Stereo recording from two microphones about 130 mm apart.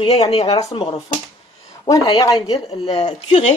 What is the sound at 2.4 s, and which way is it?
Speech, 50° left (ahead or behind).